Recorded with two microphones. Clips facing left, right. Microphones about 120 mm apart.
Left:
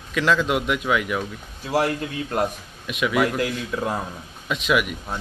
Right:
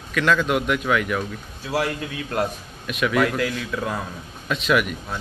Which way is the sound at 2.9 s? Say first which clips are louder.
Right 1 dB; 15° left (ahead or behind).